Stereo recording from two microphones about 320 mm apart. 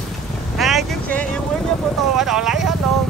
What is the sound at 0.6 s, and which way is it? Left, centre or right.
Vehicle, centre.